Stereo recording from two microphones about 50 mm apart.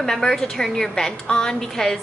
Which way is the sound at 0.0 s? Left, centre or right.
Centre.